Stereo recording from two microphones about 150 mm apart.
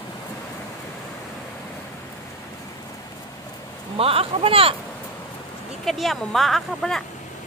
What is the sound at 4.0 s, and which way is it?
Speech, 40° right (ahead or behind).